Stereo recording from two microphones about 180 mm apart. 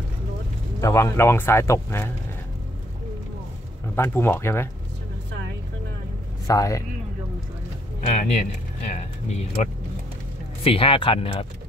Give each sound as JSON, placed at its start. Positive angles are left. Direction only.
{"t": 0.7, "sound": "speech", "side_deg": 15}
{"t": 3.9, "sound": "speech", "side_deg": 15}
{"t": 6.4, "sound": "a man's voice", "side_deg": 20}
{"t": 8.1, "sound": "speech", "side_deg": 40}